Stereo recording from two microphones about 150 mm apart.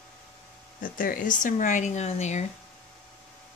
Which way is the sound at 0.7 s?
65° left (ahead or behind).